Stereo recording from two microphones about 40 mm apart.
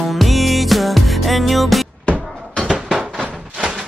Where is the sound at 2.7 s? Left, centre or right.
Right.